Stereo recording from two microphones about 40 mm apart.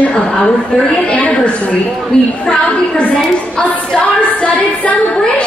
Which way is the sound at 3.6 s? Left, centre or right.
Left.